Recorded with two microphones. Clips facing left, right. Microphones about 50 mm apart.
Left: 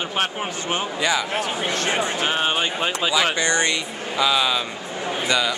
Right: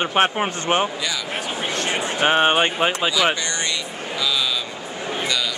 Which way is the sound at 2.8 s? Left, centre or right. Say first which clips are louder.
Right 3 dB; centre.